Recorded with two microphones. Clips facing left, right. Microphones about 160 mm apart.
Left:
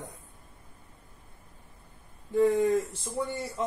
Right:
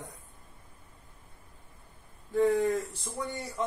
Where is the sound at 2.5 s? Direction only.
20° left (ahead or behind).